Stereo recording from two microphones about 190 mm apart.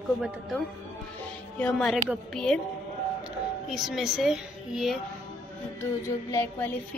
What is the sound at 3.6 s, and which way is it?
A woman's voice, centre (ahead or behind).